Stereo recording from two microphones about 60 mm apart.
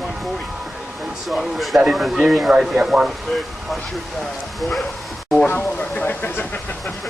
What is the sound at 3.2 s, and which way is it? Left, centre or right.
Speech, centre.